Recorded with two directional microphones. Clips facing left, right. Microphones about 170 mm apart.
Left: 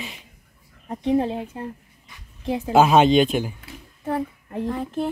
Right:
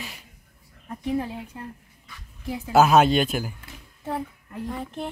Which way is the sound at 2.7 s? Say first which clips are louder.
Left 2 dB; 5° right (ahead or behind).